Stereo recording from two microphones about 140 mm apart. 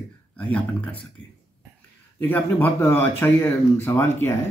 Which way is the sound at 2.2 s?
15° left (ahead or behind).